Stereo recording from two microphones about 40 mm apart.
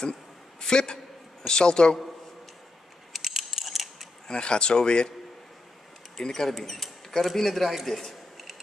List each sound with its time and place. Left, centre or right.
0.0 s a sound: centre
1.5 s speech: centre
3.1 s scissors: centre
4.3 s speech: left
6.1 s speech: centre